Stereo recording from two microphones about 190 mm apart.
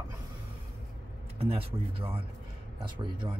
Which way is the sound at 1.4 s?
30° right (ahead or behind).